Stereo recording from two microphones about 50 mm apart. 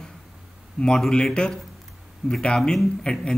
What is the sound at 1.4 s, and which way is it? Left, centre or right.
Speech, left.